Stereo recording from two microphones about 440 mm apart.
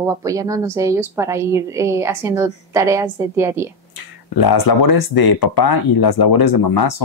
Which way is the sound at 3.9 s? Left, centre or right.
Left.